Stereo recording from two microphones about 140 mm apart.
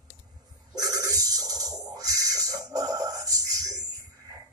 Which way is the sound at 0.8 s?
25° right (ahead or behind).